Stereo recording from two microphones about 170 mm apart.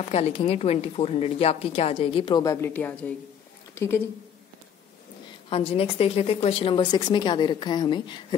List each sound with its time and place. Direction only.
0.0 s a woman's voice: 35° left (ahead or behind); by 4.0 s 15° left (ahead or behind)
5.5 s speech: 35° left (ahead or behind)